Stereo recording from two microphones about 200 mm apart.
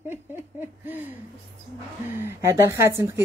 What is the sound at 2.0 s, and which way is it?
Speech, 10° right (ahead or behind).